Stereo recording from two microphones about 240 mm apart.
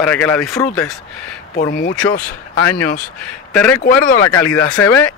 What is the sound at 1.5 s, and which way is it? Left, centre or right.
Speech, left.